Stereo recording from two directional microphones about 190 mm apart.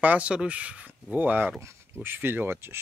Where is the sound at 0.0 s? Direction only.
5° right (ahead or behind).